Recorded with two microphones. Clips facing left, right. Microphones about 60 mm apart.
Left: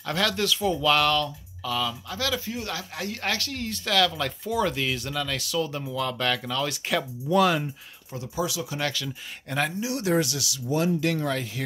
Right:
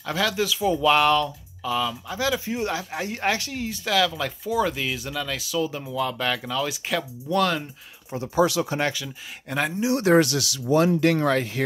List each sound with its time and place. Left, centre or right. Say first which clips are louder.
0.0 s speech: right 1 dB; centre
0.7 s speech: right 5 dB; centre
8.4 s speech: right 8 dB; right
8.9 s speech: left 1 dB; centre
9.8 s speech: right 6 dB; right
10.0 s speech: right 6 dB; right